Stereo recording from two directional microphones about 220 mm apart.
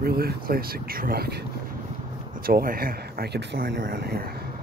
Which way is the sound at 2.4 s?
40° right (ahead or behind).